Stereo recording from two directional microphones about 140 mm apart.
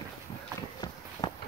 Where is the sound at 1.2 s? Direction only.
30° left (ahead or behind).